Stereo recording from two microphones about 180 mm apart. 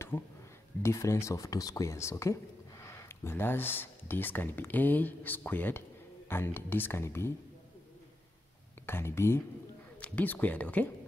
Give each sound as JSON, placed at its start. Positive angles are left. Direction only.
{"t": 0.1, "sound": "speech", "side_deg": 10}
{"t": 8.8, "sound": "speech", "side_deg": 15}